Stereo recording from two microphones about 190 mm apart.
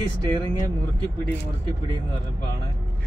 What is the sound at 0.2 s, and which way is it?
Speech, 25° right (ahead or behind).